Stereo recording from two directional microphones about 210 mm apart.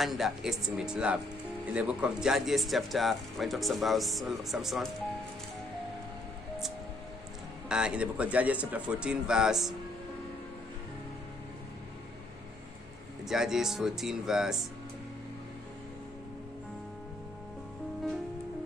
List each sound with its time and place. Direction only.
0.0 s speech: centre (ahead or behind)
7.6 s speech: 5° right (ahead or behind)
13.2 s speech: centre (ahead or behind)